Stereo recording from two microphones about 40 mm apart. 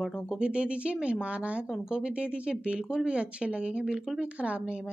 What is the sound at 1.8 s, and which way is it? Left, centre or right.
A woman's voice, right.